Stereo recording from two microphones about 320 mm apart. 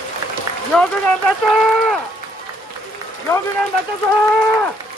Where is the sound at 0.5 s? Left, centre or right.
Centre.